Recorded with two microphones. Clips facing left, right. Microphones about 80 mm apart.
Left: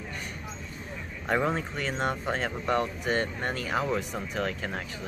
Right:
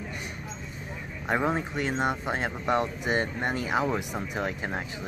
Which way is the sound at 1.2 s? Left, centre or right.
Centre.